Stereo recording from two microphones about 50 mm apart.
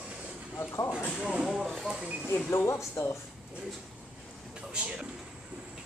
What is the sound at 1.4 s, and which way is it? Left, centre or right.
Speech, centre.